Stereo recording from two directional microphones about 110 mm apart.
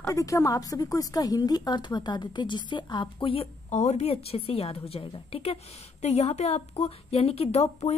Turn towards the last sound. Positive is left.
turn(degrees=65)  # may be behind; listen again after turning